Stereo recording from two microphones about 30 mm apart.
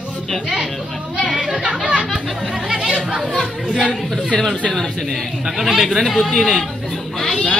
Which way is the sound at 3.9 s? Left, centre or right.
Centre.